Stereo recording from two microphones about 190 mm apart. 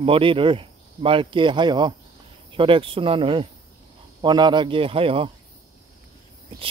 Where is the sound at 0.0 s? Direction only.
30° right (ahead or behind).